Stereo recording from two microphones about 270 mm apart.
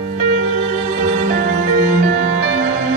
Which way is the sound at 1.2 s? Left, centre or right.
Right.